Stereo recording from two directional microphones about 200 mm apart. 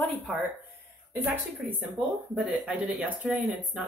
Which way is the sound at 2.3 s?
5° right (ahead or behind).